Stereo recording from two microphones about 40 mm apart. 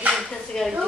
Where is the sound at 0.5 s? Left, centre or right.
Centre.